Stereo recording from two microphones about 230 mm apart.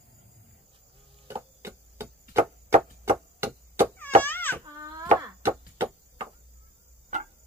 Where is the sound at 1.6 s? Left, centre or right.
Centre.